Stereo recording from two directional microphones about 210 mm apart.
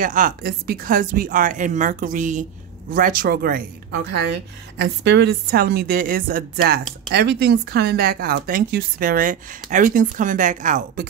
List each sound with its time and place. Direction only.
0.0 s speech: 40° right (ahead or behind)